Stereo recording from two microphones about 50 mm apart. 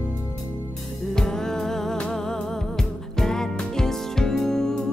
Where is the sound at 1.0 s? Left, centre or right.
Centre.